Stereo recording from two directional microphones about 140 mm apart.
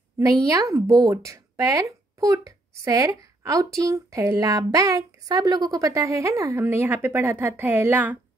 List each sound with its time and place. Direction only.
0.2 s speech: 25° right (ahead or behind)